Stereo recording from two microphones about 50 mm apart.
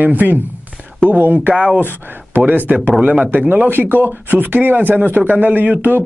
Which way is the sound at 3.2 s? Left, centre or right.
Right.